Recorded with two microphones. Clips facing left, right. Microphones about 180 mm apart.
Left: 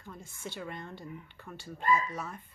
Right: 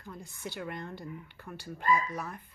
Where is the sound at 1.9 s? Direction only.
15° right (ahead or behind).